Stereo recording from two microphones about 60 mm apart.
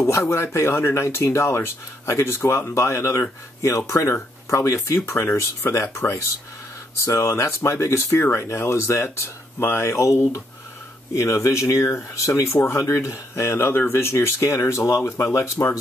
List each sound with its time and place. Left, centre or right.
0.0 s speech: left
11.1 s speech: left